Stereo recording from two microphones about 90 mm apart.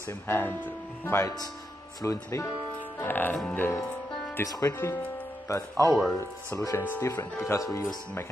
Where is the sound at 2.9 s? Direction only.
20° left (ahead or behind).